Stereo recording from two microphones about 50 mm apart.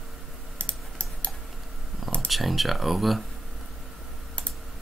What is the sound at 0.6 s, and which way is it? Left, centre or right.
Typing, left.